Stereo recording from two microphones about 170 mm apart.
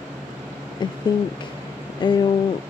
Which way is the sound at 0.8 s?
25° left (ahead or behind).